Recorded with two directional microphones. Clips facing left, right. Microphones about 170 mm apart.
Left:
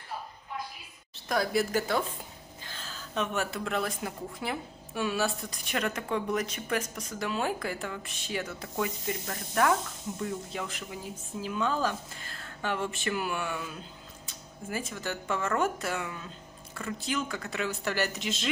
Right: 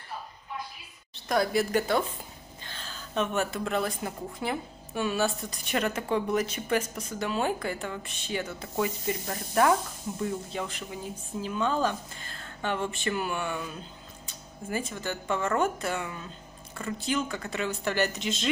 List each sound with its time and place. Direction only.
1.1 s a woman's voice: centre (ahead or behind)
9.3 s speech: 20° right (ahead or behind)
10.5 s a woman's voice: centre (ahead or behind)